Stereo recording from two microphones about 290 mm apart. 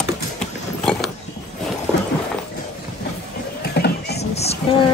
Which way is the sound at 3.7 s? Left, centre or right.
Left.